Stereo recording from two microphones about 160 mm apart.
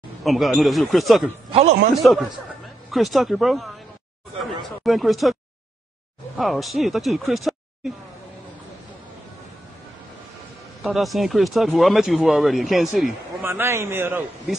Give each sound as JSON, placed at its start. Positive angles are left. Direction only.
{"t": 0.2, "sound": "speech", "side_deg": 0}
{"t": 1.5, "sound": "speech", "side_deg": -35}
{"t": 2.9, "sound": "speech", "side_deg": 0}
{"t": 4.8, "sound": "speech", "side_deg": 0}
{"t": 6.3, "sound": "speech", "side_deg": 0}
{"t": 10.8, "sound": "speech", "side_deg": 0}
{"t": 13.4, "sound": "a man's voice", "side_deg": -15}